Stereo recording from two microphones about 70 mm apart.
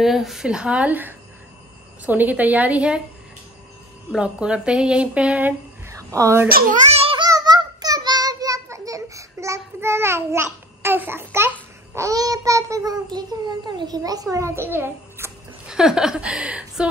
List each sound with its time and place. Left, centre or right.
0.0 s a woman's voice: centre
4.2 s speech: centre
5.9 s a sound: right
7.2 s child singing: right
11.9 s a child's voice: right
14.5 s a child's voice: right
15.6 s speech: centre